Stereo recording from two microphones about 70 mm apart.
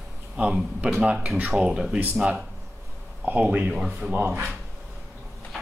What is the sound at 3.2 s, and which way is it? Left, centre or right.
Speech, right.